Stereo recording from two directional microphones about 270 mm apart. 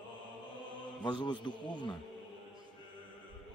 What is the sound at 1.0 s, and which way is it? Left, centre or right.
Speech, centre.